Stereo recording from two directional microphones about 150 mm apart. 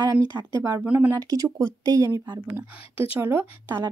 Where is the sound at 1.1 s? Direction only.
20° right (ahead or behind).